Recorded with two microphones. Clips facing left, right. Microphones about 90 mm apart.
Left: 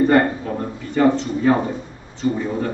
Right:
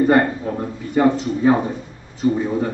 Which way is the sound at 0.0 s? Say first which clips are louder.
Even; 15° right (ahead or behind).